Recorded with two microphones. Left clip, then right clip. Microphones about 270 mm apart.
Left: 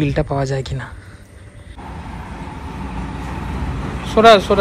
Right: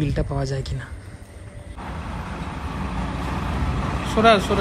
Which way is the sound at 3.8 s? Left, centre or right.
Centre.